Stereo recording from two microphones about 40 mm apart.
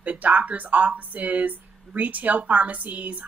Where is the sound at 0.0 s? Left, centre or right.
Right.